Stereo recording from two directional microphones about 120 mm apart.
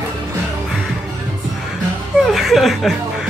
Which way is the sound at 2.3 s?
Centre (ahead or behind).